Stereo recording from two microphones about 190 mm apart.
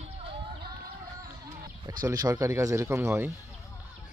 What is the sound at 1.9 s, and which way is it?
Speech, 20° right (ahead or behind).